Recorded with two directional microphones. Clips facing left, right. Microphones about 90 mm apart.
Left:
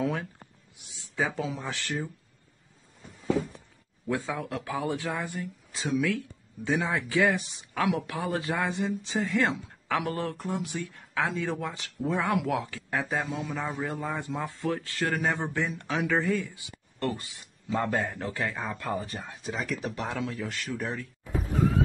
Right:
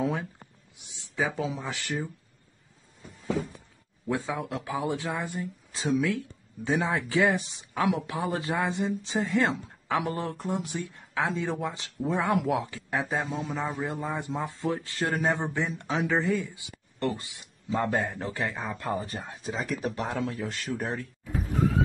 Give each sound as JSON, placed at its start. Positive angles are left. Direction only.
{"t": 0.0, "sound": "speech", "side_deg": -20}
{"t": 1.1, "sound": "speech", "side_deg": -10}
{"t": 4.1, "sound": "speech", "side_deg": -20}